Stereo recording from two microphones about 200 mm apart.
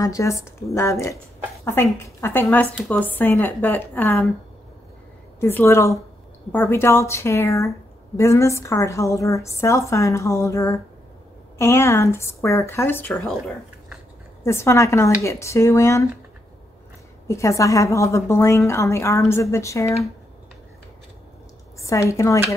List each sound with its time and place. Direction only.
0.0 s a woman's voice: 15° left (ahead or behind)
5.4 s a woman's voice: 10° left (ahead or behind)
14.4 s a woman's voice: 15° left (ahead or behind)
17.3 s a woman's voice: 15° left (ahead or behind)
21.7 s a sound: 15° left (ahead or behind)
22.1 s a woman's voice: 15° left (ahead or behind)